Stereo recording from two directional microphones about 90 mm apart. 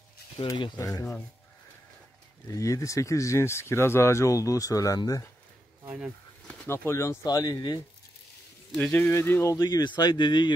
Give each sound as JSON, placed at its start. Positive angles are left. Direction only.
{"t": 0.4, "sound": "speech", "side_deg": 70}
{"t": 0.7, "sound": "speech", "side_deg": 40}
{"t": 2.4, "sound": "speech", "side_deg": 35}
{"t": 5.9, "sound": "speech", "side_deg": -15}
{"t": 6.7, "sound": "speech", "side_deg": 30}
{"t": 8.9, "sound": "speech", "side_deg": 25}
{"t": 9.6, "sound": "speech", "side_deg": 50}